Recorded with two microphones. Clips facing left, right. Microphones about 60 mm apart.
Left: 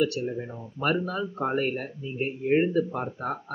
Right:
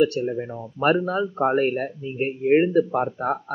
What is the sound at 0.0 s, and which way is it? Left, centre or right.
Speech, right.